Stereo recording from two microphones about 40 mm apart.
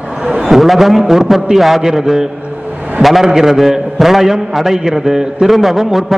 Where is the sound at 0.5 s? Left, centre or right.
Centre.